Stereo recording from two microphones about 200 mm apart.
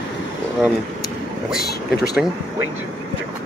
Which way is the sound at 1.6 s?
50° left (ahead or behind).